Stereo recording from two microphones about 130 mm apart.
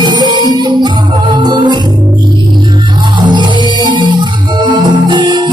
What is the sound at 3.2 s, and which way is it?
Music, 35° right (ahead or behind).